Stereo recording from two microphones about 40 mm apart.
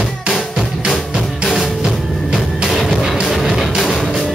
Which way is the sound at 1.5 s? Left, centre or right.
Centre.